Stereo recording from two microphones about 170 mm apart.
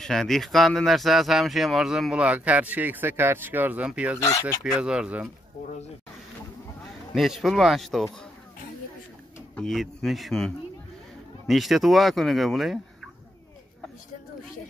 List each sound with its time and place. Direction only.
0.0 s speech: 5° left (ahead or behind)
4.4 s speech: 20° left (ahead or behind)
4.7 s speech: 5° right (ahead or behind)
7.2 s speech: centre (ahead or behind)
9.6 s speech: centre (ahead or behind)